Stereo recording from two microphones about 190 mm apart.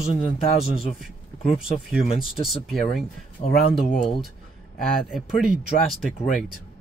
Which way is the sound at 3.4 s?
30° left (ahead or behind).